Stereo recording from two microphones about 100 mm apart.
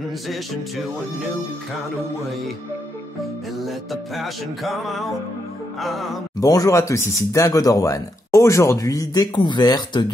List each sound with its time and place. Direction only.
3.6 s music: centre (ahead or behind)
6.4 s speech: 35° left (ahead or behind)